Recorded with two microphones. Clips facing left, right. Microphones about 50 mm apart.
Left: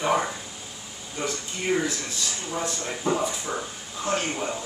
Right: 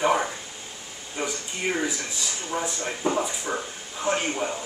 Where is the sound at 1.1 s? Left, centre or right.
Centre.